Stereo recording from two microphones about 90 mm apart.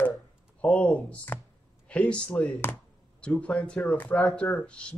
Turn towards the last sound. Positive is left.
turn(degrees=15)  # may be behind; listen again after turning